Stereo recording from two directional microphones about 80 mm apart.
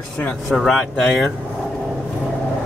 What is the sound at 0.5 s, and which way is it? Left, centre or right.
Speech, centre.